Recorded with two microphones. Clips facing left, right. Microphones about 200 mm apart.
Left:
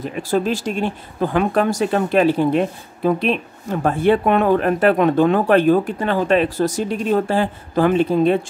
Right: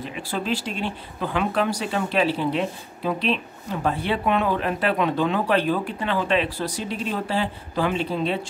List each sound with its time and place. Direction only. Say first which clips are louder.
0.0 s speech: left 9 dB; 45° left (ahead or behind)